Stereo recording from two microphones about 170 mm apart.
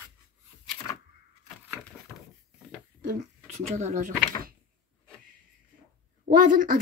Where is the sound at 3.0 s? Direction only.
45° right (ahead or behind).